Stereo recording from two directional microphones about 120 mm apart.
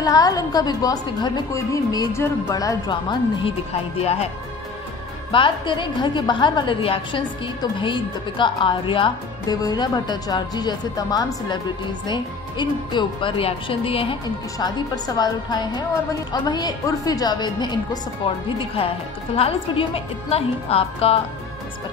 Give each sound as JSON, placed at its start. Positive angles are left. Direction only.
{"t": 0.0, "sound": "a woman's voice", "side_deg": 30}
{"t": 4.0, "sound": "a woman's voice", "side_deg": 60}
{"t": 5.3, "sound": "a woman's voice", "side_deg": 45}
{"t": 15.1, "sound": "a woman's voice", "side_deg": 35}
{"t": 18.2, "sound": "a woman's voice", "side_deg": 50}